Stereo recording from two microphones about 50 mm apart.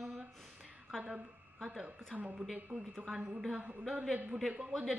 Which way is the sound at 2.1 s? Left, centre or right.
Right.